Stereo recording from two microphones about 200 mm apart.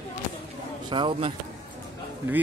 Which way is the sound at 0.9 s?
25° right (ahead or behind).